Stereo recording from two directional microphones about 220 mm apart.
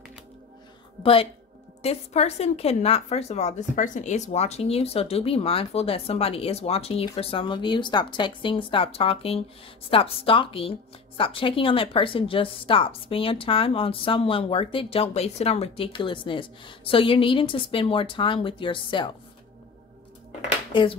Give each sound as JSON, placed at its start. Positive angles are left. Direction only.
{"t": 1.0, "sound": "a woman's voice", "side_deg": 25}
{"t": 20.7, "sound": "a woman's voice", "side_deg": 25}